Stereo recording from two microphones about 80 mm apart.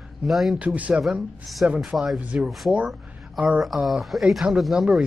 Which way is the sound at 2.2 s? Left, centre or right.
Centre.